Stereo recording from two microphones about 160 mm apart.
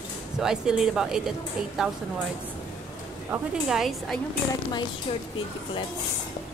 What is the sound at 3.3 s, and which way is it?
Speech, centre (ahead or behind).